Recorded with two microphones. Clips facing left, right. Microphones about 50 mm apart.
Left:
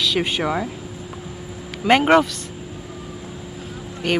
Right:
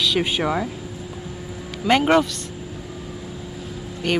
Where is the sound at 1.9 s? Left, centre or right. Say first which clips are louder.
Left 2 dB; left.